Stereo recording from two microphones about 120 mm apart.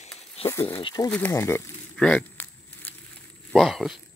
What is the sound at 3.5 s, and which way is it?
Speech, centre (ahead or behind).